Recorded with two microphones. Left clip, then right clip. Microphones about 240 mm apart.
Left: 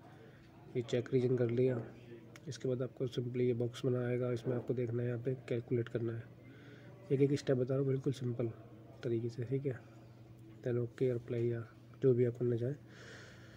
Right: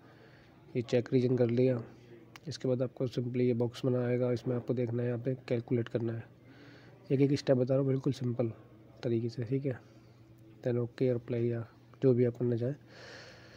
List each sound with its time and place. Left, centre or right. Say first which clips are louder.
0.7 s speech: right 5 dB; right